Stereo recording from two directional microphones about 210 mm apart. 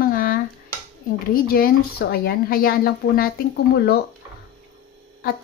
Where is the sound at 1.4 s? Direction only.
45° left (ahead or behind).